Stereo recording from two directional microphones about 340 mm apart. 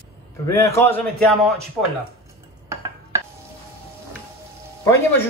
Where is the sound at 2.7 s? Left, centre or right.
Centre.